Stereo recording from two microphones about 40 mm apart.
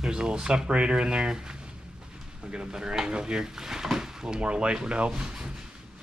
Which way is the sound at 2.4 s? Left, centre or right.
Right.